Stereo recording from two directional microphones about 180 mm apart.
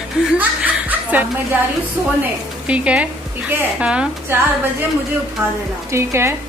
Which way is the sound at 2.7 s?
5° right (ahead or behind).